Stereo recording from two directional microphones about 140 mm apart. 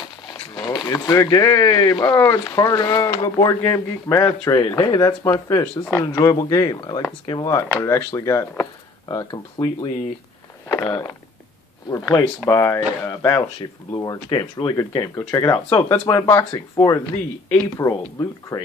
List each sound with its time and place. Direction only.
0.6 s speech: 25° left (ahead or behind)
13.6 s speech: 30° left (ahead or behind)
15.5 s speech: 20° left (ahead or behind)